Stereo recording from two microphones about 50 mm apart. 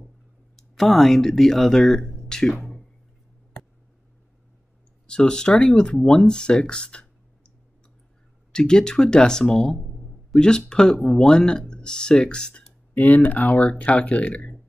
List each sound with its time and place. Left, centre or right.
0.6 s speech: centre
5.0 s speech: centre
8.5 s speech: centre
12.9 s speech: left